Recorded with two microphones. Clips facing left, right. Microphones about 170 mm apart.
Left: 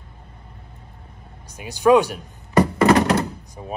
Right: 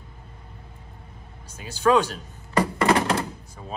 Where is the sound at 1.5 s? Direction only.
15° left (ahead or behind).